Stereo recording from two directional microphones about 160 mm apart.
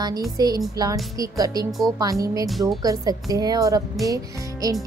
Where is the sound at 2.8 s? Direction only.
25° right (ahead or behind).